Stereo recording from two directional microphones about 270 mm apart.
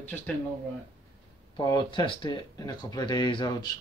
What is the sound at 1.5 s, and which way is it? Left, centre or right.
Speech, centre.